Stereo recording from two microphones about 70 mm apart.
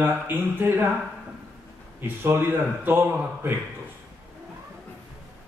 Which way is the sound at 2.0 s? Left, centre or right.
Right.